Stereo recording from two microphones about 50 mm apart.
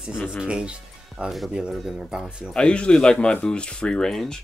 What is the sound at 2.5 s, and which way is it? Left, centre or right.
A man's voice, left.